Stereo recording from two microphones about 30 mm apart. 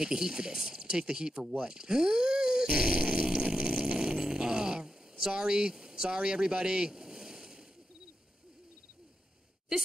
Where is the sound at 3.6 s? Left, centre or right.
Right.